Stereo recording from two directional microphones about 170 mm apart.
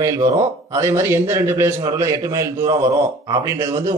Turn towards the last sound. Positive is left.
turn(degrees=-20)  # may be behind; listen again after turning